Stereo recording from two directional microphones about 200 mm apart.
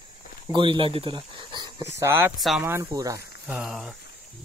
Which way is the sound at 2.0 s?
10° right (ahead or behind).